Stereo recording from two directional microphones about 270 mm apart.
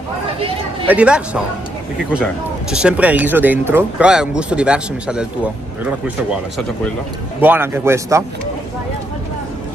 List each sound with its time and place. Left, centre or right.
0.8 s speech: centre
2.7 s speech: centre
7.3 s speech: centre